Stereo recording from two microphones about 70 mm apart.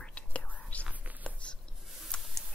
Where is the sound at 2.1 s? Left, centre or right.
Centre.